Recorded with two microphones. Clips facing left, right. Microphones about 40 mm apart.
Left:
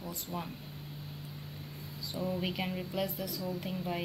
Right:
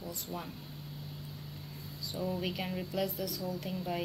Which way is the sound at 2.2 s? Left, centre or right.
Centre.